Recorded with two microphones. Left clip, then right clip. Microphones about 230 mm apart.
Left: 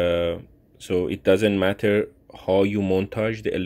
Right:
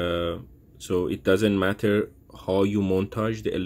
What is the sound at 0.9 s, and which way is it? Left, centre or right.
Speech, centre.